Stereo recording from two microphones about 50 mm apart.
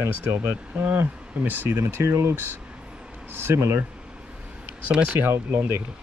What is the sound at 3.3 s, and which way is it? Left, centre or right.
Speech, right.